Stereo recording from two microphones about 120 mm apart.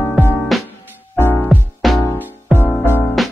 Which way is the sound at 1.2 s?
15° left (ahead or behind).